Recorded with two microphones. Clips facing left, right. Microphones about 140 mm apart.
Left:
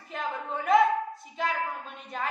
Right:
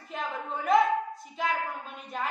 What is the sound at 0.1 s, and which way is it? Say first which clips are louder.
Speech: left 1 dB; centre (ahead or behind).